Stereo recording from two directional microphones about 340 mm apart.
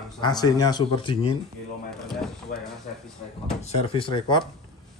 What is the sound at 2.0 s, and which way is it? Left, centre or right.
Speech, centre.